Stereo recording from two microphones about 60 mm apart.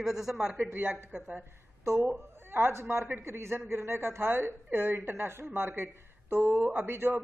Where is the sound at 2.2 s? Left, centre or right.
Right.